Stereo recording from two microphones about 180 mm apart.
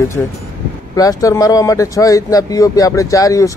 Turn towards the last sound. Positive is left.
turn(degrees=20)  # may be behind; listen again after turning